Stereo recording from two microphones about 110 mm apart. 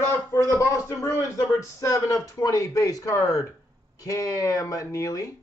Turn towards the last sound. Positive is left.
turn(degrees=30)  # may be behind; listen again after turning